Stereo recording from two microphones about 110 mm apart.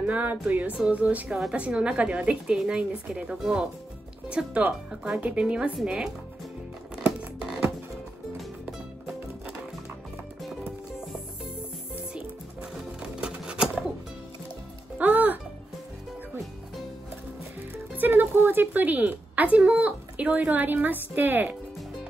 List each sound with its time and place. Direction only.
0.0 s a woman's voice: 15° right (ahead or behind)
7.0 s music: 10° right (ahead or behind)
13.0 s a sound: 10° right (ahead or behind)
15.0 s music: 15° right (ahead or behind)
17.9 s a woman's voice: 15° right (ahead or behind)